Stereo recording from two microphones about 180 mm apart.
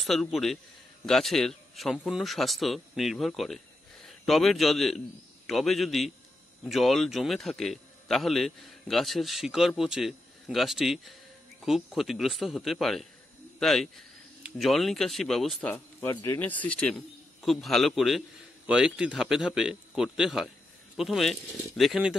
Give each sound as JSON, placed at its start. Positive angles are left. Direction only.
{"t": 0.0, "sound": "a man's voice", "side_deg": 0}